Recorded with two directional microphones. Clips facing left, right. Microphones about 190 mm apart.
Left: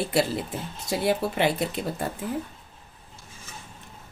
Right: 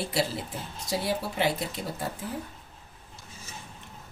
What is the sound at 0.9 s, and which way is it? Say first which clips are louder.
Speech: left 5 dB; 60° left (ahead or behind).